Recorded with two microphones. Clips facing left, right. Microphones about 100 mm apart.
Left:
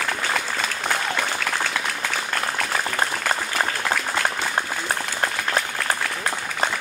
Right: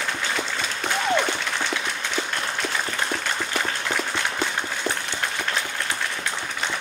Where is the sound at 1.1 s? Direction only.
25° right (ahead or behind).